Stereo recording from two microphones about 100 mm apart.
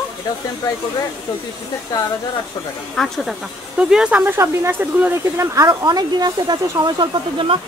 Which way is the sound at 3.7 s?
10° right (ahead or behind).